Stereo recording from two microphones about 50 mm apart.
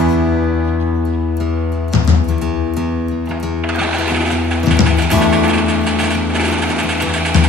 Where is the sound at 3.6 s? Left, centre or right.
Centre.